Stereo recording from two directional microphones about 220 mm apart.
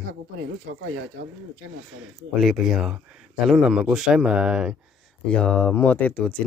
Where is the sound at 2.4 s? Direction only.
Centre (ahead or behind).